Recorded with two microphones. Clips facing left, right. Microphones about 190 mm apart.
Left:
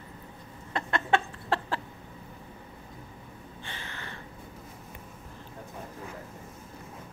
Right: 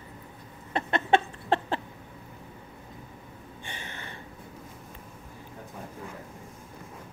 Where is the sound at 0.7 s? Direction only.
20° right (ahead or behind).